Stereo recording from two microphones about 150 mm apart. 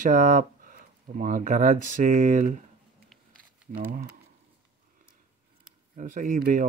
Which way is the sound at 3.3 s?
70° right (ahead or behind).